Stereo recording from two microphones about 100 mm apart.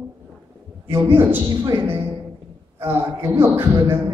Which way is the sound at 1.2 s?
20° right (ahead or behind).